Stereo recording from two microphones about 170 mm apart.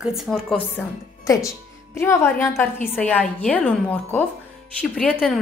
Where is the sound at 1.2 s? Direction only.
20° left (ahead or behind).